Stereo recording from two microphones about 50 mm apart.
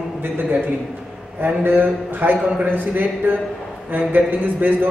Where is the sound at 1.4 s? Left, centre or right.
Right.